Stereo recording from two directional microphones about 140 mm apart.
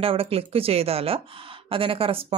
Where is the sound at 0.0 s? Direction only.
40° right (ahead or behind).